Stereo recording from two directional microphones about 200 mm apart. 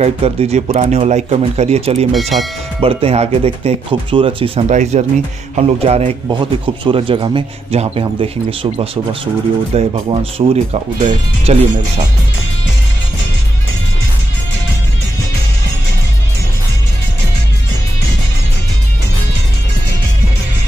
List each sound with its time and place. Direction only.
0.0 s speech: 30° right (ahead or behind)
2.1 s speech: centre (ahead or behind)
2.8 s a man's voice: 30° right (ahead or behind)